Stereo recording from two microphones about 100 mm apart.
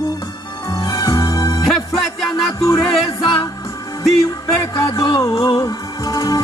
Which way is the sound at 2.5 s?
35° left (ahead or behind).